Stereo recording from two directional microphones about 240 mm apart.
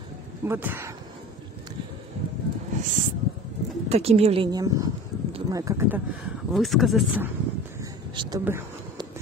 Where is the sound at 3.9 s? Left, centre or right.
Right; by 7.2 s centre.